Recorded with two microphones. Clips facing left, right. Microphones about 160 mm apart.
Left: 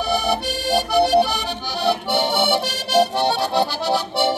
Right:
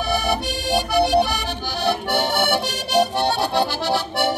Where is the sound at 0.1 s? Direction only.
Centre (ahead or behind).